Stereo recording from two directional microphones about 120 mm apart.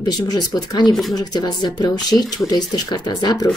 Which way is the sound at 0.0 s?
35° left (ahead or behind).